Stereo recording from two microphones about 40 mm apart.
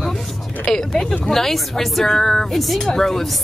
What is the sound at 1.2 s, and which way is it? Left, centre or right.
A woman's voice, centre.